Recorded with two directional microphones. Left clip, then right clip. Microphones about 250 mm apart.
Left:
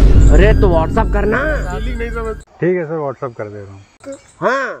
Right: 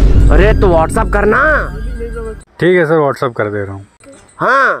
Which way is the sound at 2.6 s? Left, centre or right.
Right.